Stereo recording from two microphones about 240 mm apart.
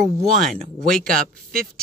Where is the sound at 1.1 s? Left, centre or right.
Right.